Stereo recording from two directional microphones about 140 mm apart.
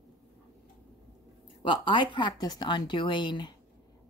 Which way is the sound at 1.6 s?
35° left (ahead or behind).